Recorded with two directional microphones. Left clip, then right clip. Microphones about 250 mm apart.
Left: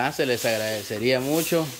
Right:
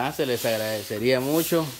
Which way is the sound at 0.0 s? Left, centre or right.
Centre.